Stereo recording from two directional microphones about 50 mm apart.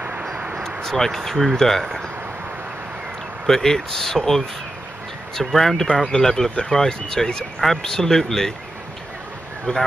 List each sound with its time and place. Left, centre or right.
0.7 s speech: centre
3.4 s speech: centre
9.7 s speech: centre